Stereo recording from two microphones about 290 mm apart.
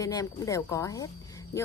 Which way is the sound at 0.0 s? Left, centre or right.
Centre.